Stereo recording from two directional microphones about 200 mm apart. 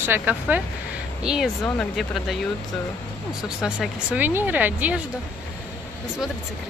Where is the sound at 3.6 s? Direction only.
5° right (ahead or behind).